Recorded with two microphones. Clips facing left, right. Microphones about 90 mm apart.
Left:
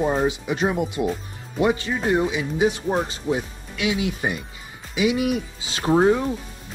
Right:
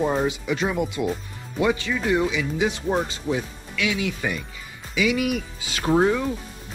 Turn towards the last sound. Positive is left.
turn(degrees=30)  # may be behind; listen again after turning